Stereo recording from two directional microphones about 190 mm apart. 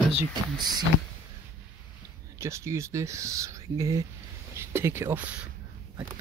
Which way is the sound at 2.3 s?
15° right (ahead or behind).